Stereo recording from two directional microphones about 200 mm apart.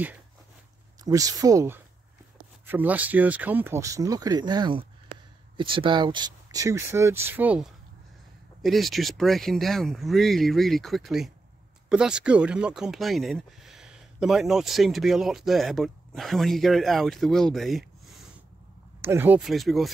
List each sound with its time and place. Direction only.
1.0 s speech: 15° right (ahead or behind); by 18.1 s centre (ahead or behind)
18.9 s speech: 10° right (ahead or behind)